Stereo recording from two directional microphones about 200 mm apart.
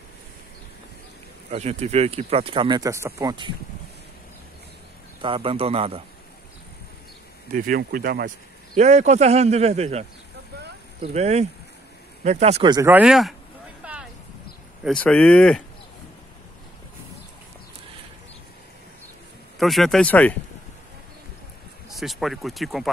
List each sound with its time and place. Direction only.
1.5 s speech: 30° right (ahead or behind)
5.2 s speech: 25° right (ahead or behind)
7.5 s speech: 45° right (ahead or behind)
8.7 s a man's voice: 35° right (ahead or behind)
11.1 s a man's voice: 35° right (ahead or behind)
12.7 s speech: 10° right (ahead or behind)
14.8 s speech: 5° left (ahead or behind)
19.6 s speech: centre (ahead or behind)
21.8 s speech: centre (ahead or behind)